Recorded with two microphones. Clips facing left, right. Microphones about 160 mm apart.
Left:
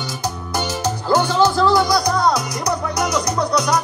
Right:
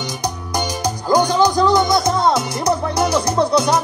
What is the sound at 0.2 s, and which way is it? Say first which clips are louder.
Music: even; 15° right (ahead or behind).